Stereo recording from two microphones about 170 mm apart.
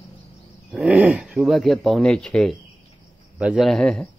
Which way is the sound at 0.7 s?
10° right (ahead or behind).